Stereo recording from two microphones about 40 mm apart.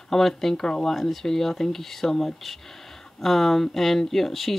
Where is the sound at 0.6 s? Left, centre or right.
Centre.